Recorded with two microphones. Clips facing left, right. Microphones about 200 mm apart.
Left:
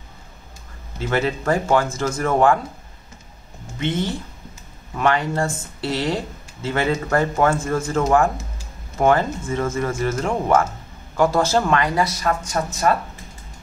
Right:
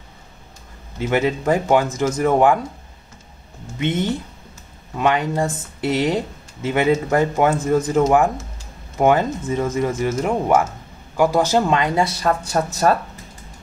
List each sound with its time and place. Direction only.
0.9 s speech: 15° right (ahead or behind)
3.7 s speech: 20° right (ahead or behind); by 12.6 s 35° right (ahead or behind)